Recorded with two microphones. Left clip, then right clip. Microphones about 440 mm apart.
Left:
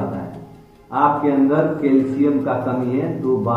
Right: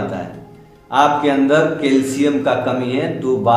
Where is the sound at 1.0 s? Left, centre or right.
Right.